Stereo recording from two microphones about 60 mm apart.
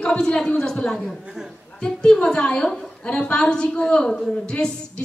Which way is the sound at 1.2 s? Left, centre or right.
Centre.